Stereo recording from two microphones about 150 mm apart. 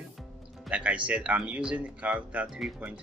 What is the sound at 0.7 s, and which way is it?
Speech, 10° right (ahead or behind).